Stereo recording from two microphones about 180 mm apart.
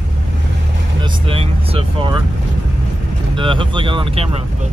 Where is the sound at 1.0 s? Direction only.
30° right (ahead or behind).